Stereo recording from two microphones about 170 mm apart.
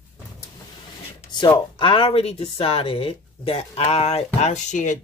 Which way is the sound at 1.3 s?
25° left (ahead or behind).